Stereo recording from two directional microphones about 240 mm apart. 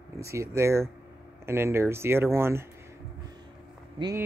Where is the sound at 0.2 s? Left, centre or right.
Centre.